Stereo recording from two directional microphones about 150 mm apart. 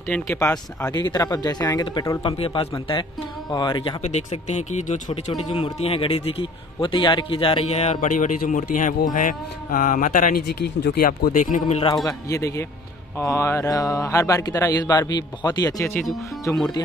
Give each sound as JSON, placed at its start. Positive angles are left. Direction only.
{"t": 0.1, "sound": "speech", "side_deg": 20}
{"t": 2.3, "sound": "speech", "side_deg": 40}
{"t": 4.0, "sound": "speech", "side_deg": 50}
{"t": 5.3, "sound": "a man's voice", "side_deg": 30}
{"t": 11.9, "sound": "speech", "side_deg": 20}
{"t": 15.8, "sound": "speech", "side_deg": 15}